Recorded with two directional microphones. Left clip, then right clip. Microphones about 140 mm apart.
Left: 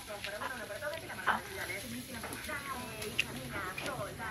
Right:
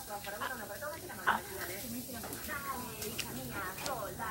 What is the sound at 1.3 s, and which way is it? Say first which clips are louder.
Sizzle: right 1 dB; 5° right (ahead or behind).